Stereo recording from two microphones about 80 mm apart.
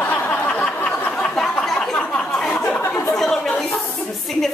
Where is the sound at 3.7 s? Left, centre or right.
Centre.